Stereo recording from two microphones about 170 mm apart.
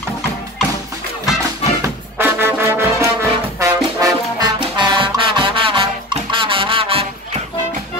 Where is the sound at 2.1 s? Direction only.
15° right (ahead or behind); by 7.4 s 35° right (ahead or behind).